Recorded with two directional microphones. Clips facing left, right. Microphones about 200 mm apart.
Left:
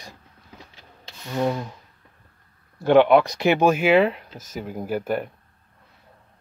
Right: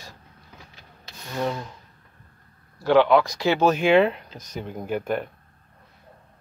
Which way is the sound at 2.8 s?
20° left (ahead or behind).